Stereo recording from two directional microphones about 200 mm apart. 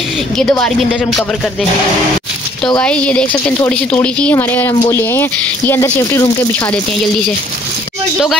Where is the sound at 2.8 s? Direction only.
5° left (ahead or behind).